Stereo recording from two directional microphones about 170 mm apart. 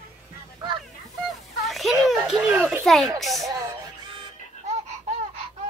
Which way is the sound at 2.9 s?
Centre (ahead or behind).